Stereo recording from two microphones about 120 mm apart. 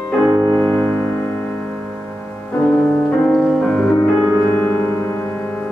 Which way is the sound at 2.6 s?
10° left (ahead or behind).